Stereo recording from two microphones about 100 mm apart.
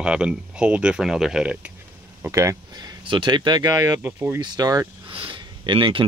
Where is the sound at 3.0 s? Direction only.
55° right (ahead or behind).